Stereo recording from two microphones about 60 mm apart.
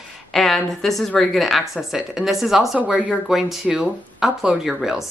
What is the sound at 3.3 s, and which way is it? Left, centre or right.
Speech, centre.